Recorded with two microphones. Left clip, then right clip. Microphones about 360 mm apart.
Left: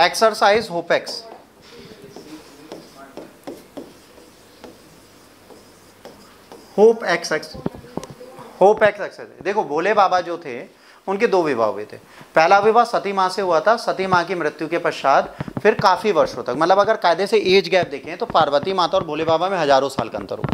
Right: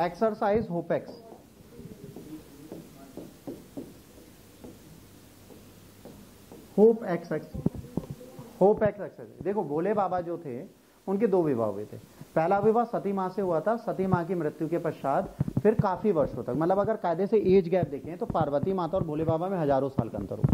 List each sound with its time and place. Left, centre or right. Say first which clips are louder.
0.0 s a man's voice: left 12 dB; centre
6.7 s a man's voice: left 8 dB; centre
7.9 s a sound: left 7 dB; centre
8.7 s a man's voice: left 11 dB; centre